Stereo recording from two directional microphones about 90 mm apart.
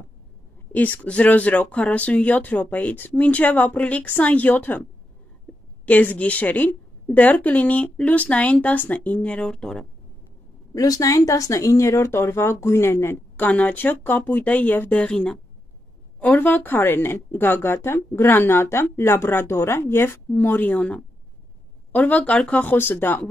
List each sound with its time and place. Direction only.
0.7 s speech: 20° left (ahead or behind)
5.9 s speech: 15° left (ahead or behind)
10.7 s speech: 40° left (ahead or behind); by 23.2 s 25° left (ahead or behind)